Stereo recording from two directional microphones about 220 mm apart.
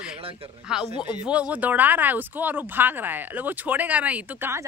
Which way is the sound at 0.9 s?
20° left (ahead or behind).